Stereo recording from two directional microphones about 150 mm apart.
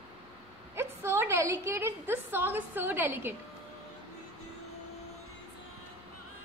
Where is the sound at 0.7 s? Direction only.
15° right (ahead or behind).